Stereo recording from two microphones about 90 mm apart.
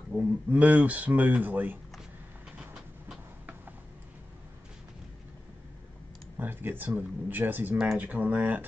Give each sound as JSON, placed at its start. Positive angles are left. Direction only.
{"t": 0.5, "sound": "speech", "side_deg": -15}
{"t": 2.5, "sound": "train", "side_deg": -10}
{"t": 6.3, "sound": "speech", "side_deg": -20}
{"t": 7.7, "sound": "speech", "side_deg": -5}
{"t": 8.0, "sound": "speech", "side_deg": -15}